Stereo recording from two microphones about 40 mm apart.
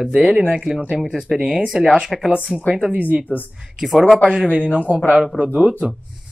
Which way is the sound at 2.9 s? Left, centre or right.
Right.